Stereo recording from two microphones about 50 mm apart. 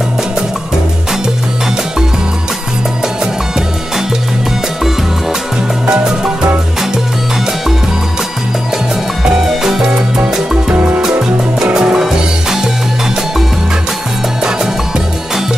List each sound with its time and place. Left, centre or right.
5.9 s music: centre
9.2 s music: centre
9.8 s music: right